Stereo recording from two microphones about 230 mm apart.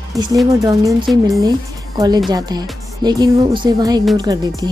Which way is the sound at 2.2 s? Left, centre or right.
Centre.